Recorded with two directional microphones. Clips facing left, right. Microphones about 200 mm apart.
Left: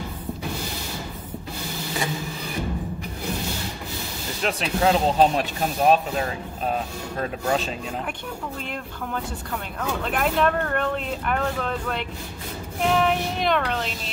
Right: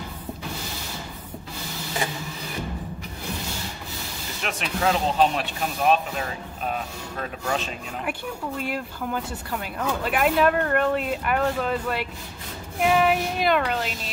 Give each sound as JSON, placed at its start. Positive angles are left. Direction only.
{"t": 4.4, "sound": "speech", "side_deg": 35}
{"t": 8.6, "sound": "speech", "side_deg": -5}